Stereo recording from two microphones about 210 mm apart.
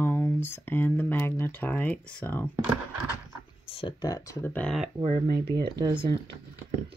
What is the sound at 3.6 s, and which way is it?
Speech, 25° left (ahead or behind).